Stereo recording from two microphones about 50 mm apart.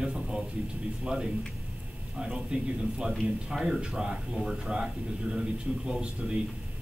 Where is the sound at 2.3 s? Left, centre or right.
Centre.